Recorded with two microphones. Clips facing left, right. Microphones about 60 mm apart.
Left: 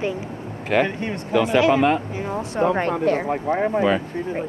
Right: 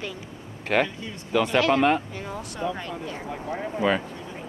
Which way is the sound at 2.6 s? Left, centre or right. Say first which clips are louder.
Left 11 dB; left.